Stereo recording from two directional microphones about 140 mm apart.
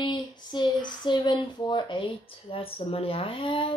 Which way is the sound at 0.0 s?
35° left (ahead or behind).